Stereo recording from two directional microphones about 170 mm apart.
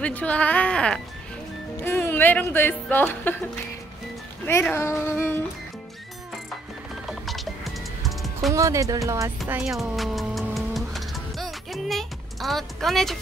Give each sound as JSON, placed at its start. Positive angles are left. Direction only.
{"t": 0.0, "sound": "speech", "side_deg": 10}
{"t": 4.5, "sound": "speech", "side_deg": 15}
{"t": 7.1, "sound": "music", "side_deg": 0}
{"t": 8.5, "sound": "speech", "side_deg": -20}
{"t": 9.5, "sound": "music", "side_deg": -5}